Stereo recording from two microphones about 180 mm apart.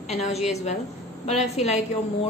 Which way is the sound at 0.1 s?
35° left (ahead or behind).